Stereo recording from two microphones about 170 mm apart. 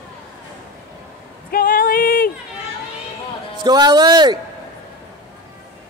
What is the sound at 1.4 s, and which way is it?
Female singing, 55° left (ahead or behind).